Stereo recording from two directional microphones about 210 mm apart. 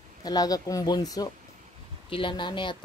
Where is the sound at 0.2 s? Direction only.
20° left (ahead or behind).